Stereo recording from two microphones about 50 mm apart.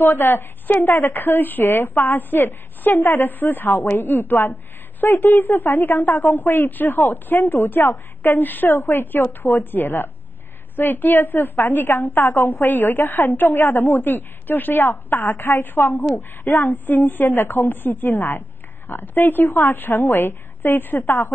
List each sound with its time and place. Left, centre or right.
0.0 s a woman's voice: left
8.6 s a woman's voice: left
8.9 s a woman's voice: left
19.4 s a woman's voice: left
19.7 s a woman's voice: left